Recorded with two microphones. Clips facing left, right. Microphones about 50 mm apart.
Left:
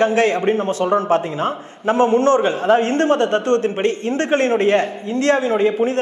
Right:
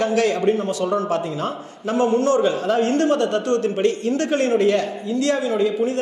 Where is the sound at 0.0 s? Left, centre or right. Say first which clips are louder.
Left 3 dB; left.